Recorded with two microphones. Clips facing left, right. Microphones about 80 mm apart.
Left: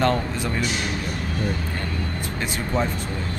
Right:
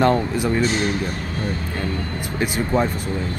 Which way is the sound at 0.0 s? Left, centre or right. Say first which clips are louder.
Right 4 dB; centre.